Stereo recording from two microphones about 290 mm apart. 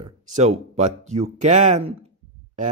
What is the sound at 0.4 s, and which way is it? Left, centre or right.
Speech, right.